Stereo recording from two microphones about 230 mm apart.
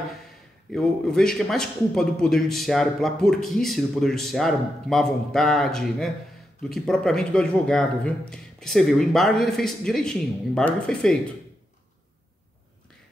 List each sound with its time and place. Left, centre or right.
0.7 s a man's voice: centre